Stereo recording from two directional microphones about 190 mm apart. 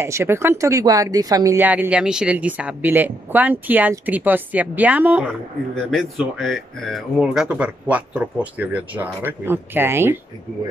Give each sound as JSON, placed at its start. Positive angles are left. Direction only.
{"t": 0.0, "sound": "speech", "side_deg": -15}